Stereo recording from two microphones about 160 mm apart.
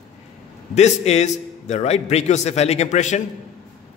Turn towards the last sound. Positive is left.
turn(degrees=45)  # may be behind; listen again after turning